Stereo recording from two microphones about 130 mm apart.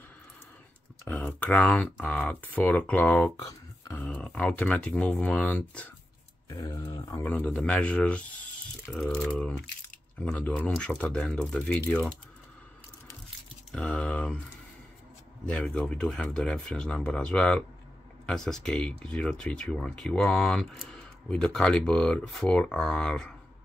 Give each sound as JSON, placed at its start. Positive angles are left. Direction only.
{"t": 1.0, "sound": "speech", "side_deg": 10}
{"t": 3.4, "sound": "a sound", "side_deg": 25}
{"t": 4.0, "sound": "speech", "side_deg": 10}
{"t": 6.5, "sound": "speech", "side_deg": 25}
{"t": 7.2, "sound": "speech", "side_deg": 10}
{"t": 13.7, "sound": "speech", "side_deg": 10}
{"t": 15.4, "sound": "speech", "side_deg": 10}